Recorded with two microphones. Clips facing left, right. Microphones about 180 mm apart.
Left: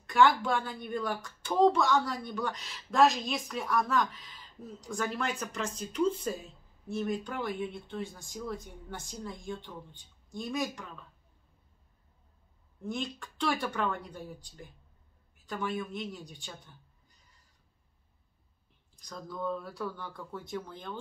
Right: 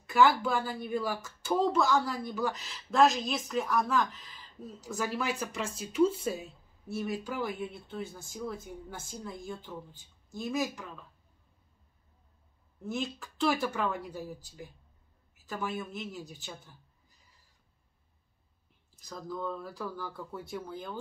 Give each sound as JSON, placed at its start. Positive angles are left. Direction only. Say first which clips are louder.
{"t": 0.0, "sound": "speech", "louder": "even", "side_deg": -5}
{"t": 12.8, "sound": "speech", "louder": "right 1 dB", "side_deg": -5}
{"t": 18.9, "sound": "speech", "louder": "right 1 dB", "side_deg": -5}